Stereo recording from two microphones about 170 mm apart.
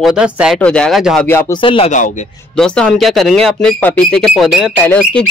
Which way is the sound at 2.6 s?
5° left (ahead or behind).